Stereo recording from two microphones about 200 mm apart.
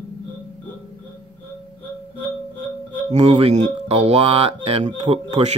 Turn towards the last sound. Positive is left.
turn(degrees=-25)  # may be behind; listen again after turning